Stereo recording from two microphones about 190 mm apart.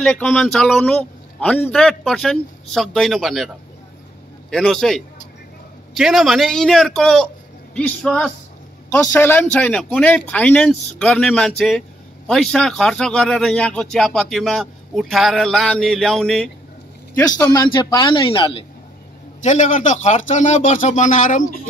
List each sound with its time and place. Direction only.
0.0 s speech: 5° left (ahead or behind)
17.4 s a woman's voice: 20° left (ahead or behind)
19.4 s speech: 40° left (ahead or behind)